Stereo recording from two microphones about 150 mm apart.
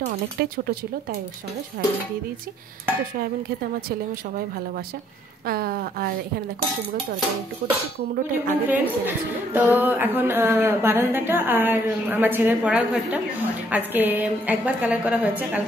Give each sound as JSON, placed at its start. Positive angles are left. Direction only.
{"t": 0.4, "sound": "speech", "side_deg": -90}
{"t": 1.8, "sound": "speech", "side_deg": -90}
{"t": 5.5, "sound": "speech", "side_deg": -80}
{"t": 7.6, "sound": "speech", "side_deg": -55}
{"t": 8.6, "sound": "music", "side_deg": -10}